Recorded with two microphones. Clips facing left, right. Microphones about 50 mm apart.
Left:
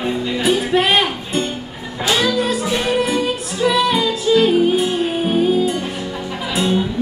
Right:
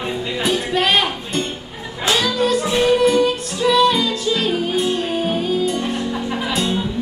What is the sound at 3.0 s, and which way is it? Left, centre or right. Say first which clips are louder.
Music: right 4 dB; centre.